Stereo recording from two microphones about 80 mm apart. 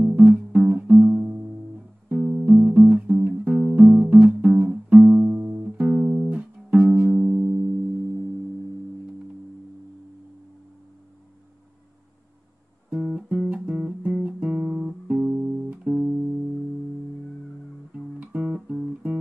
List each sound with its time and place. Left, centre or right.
0.1 s music: centre
12.9 s music: centre
17.9 s music: centre